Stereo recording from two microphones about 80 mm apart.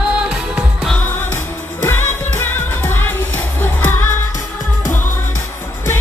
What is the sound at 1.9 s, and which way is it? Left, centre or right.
Music of asia, left.